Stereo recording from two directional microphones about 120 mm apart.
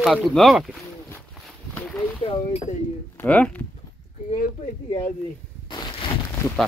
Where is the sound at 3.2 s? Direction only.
15° left (ahead or behind).